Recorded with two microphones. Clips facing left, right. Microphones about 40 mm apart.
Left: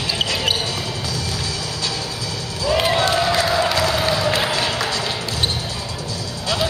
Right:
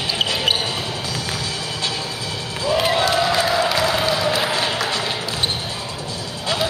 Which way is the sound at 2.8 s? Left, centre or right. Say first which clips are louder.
Even; centre.